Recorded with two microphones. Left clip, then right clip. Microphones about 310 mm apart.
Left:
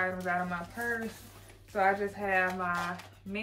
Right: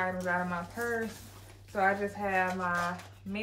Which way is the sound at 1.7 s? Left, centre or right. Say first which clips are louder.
Left 1 dB; centre.